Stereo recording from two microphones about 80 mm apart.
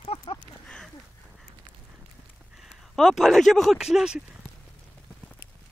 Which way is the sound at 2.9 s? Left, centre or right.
Centre.